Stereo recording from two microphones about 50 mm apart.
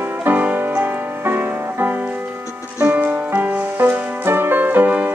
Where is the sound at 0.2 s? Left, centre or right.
Right.